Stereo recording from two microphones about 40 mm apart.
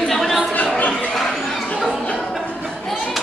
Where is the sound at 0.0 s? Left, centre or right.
Centre.